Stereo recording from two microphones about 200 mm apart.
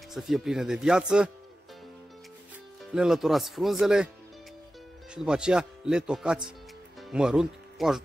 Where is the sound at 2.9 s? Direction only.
Centre (ahead or behind).